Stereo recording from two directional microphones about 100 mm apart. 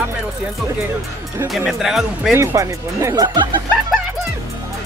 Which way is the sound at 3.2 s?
50° right (ahead or behind).